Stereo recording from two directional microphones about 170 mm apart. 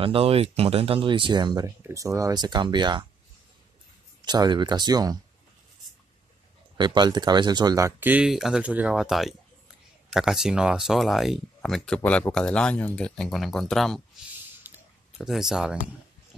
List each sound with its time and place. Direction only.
0.0 s speech: 35° right (ahead or behind)
4.2 s speech: 25° right (ahead or behind)
6.8 s speech: 25° right (ahead or behind); by 14.0 s centre (ahead or behind)
14.6 s a sound: 5° right (ahead or behind)